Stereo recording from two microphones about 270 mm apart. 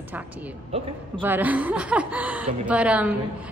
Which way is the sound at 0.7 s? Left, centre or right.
Right.